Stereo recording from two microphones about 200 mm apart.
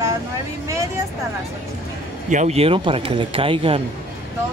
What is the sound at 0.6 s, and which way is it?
Speech, 15° right (ahead or behind).